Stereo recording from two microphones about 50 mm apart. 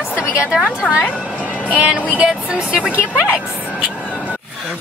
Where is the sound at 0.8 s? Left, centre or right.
Centre.